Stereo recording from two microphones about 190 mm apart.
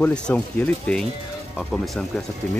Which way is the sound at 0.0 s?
5° left (ahead or behind).